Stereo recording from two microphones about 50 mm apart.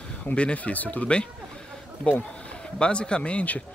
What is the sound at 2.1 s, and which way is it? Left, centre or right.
Speech, left.